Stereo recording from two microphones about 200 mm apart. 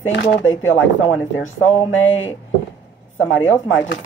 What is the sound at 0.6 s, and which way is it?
Speech, 75° left (ahead or behind).